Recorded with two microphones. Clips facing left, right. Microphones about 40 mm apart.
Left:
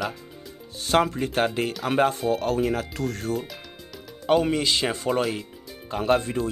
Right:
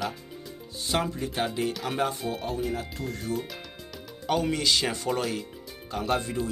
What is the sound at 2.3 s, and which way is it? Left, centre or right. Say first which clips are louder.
Speech: left 8 dB; left.